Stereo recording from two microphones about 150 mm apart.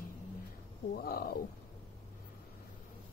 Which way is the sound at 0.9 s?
90° left.